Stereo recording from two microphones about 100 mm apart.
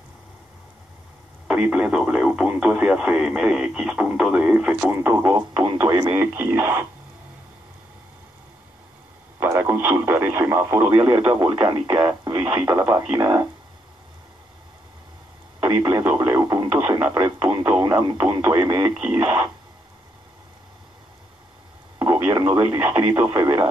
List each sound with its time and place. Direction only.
1.5 s speech: 15° right (ahead or behind)
4.8 s speech: 25° right (ahead or behind)
5.2 s speech: 45° right (ahead or behind)
6.0 s speech: 25° right (ahead or behind)
9.4 s speech: 25° right (ahead or behind)
11.4 s speech: 50° right (ahead or behind)
16.2 s radio: 35° right (ahead or behind)
17.7 s a sound: 40° right (ahead or behind)
18.2 s speech: 30° right (ahead or behind)
18.6 s speech: 40° right (ahead or behind)
21.9 s a sound: 40° right (ahead or behind)
22.5 s speech: 25° right (ahead or behind)
23.3 s speech: 35° right (ahead or behind)